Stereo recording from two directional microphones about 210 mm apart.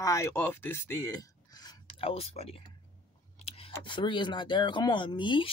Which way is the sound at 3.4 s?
25° left (ahead or behind).